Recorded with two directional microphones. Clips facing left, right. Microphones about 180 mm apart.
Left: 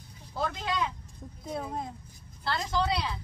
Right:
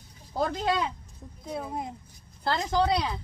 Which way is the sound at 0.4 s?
40° right (ahead or behind).